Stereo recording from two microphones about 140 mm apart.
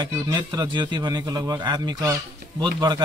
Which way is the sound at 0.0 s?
30° right (ahead or behind).